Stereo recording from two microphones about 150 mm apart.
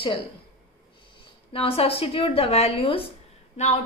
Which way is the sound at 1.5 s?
40° left (ahead or behind).